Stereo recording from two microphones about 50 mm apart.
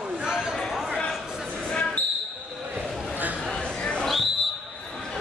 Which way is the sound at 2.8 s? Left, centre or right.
Centre.